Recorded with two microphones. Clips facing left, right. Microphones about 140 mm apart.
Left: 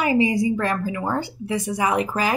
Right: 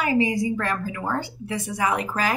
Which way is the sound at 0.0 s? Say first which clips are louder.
Left 3 dB; 15° left (ahead or behind).